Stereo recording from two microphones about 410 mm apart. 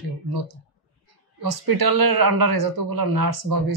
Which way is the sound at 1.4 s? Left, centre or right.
Right.